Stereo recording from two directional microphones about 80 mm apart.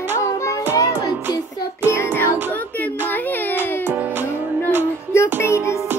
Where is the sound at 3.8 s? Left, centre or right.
Right.